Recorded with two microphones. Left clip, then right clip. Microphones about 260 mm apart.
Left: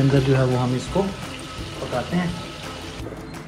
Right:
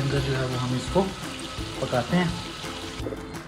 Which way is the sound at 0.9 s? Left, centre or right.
Centre.